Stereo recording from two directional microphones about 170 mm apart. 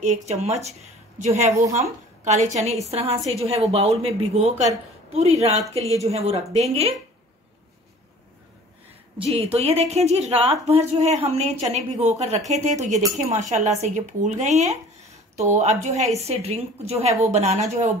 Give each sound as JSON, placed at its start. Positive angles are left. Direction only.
{"t": 0.0, "sound": "a woman's voice", "side_deg": -40}
{"t": 1.5, "sound": "speech", "side_deg": -20}
{"t": 1.8, "sound": "a woman's voice", "side_deg": -40}
{"t": 9.4, "sound": "a woman's voice", "side_deg": -35}